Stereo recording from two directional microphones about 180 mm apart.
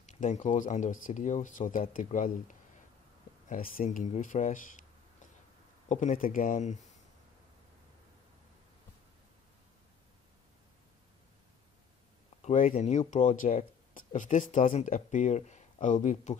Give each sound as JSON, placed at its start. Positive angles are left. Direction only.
{"t": 0.0, "sound": "speech", "side_deg": 40}
{"t": 3.4, "sound": "speech", "side_deg": 50}
{"t": 5.9, "sound": "speech", "side_deg": 45}
{"t": 12.4, "sound": "speech", "side_deg": 40}